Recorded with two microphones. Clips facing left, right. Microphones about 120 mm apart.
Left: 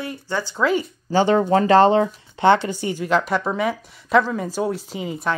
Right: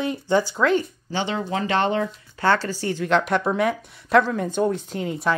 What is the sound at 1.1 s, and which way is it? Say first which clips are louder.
Speech: left 9 dB; 45° left (ahead or behind).